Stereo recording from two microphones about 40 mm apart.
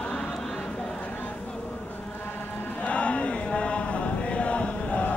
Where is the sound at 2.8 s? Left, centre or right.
Left.